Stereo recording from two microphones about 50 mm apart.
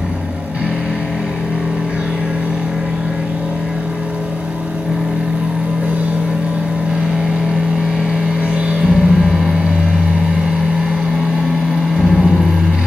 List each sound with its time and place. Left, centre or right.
8.8 s vehicle: centre
12.0 s vehicle: centre